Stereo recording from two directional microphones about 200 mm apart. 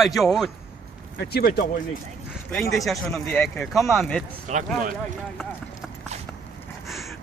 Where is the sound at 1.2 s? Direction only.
50° left (ahead or behind).